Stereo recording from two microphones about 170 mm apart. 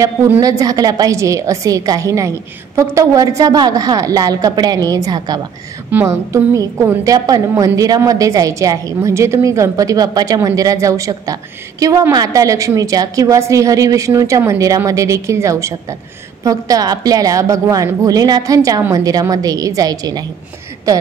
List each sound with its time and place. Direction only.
0.0 s a woman's voice: 20° right (ahead or behind)